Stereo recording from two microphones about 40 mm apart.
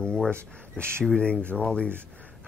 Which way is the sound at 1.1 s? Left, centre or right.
Left.